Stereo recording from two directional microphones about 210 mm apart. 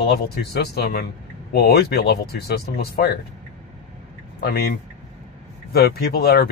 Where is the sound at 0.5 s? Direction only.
50° left (ahead or behind).